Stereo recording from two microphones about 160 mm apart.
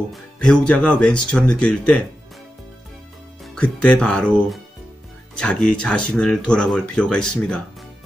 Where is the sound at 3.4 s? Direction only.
5° left (ahead or behind).